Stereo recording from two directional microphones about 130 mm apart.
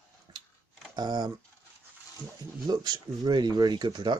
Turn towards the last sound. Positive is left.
turn(degrees=-35)  # may be behind; listen again after turning